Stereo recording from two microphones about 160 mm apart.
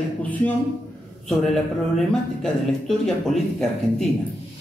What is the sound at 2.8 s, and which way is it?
Speech, centre (ahead or behind).